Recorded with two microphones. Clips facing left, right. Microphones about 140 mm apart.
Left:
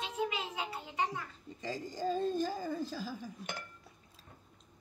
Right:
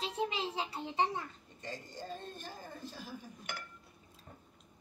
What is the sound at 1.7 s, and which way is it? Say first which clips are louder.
Speech: left 8 dB; 90° left.